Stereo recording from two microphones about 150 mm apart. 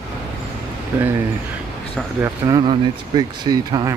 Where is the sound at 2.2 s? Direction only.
25° right (ahead or behind).